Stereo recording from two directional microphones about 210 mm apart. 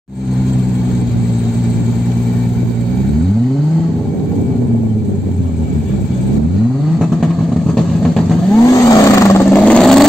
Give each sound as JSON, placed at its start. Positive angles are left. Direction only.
{"t": 8.6, "sound": "vehicle", "side_deg": 15}